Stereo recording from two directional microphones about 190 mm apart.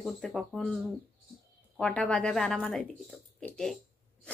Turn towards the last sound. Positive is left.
turn(degrees=5)  # may be behind; listen again after turning